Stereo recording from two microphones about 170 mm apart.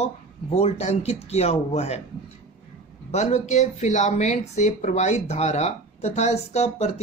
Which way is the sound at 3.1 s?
45° left (ahead or behind).